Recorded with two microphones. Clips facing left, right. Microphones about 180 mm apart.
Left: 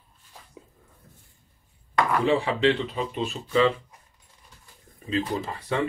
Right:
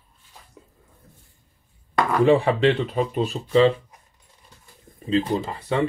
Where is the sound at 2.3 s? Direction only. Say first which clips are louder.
Right 6 dB; 55° right (ahead or behind); by 3.7 s 35° right (ahead or behind).